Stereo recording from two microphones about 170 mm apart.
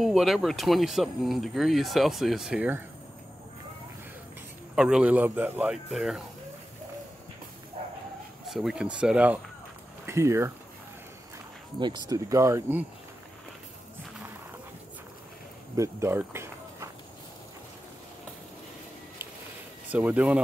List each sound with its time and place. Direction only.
0.0 s speech: centre (ahead or behind)
4.7 s speech: 5° right (ahead or behind)
8.5 s speech: centre (ahead or behind)
11.8 s speech: 25° right (ahead or behind)
15.7 s a sound: 15° right (ahead or behind)
19.9 s speech: 10° right (ahead or behind)